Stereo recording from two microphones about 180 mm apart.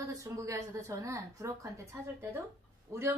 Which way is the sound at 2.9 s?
15° right (ahead or behind).